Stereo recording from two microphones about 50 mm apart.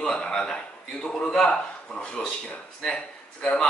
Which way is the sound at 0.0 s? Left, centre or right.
Centre.